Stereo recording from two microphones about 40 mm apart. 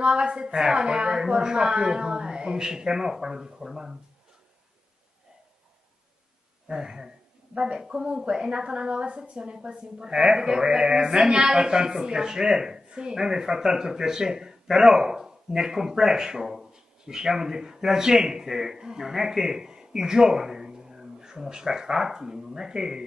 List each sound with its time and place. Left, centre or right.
0.0 s speech: right
6.7 s a woman's voice: centre